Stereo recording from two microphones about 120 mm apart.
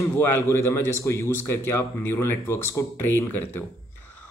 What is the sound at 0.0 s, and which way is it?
A man's voice, 15° left (ahead or behind).